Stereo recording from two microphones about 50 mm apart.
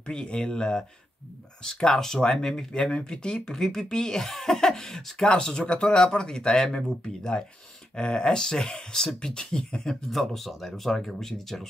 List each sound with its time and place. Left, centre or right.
0.0 s speech: centre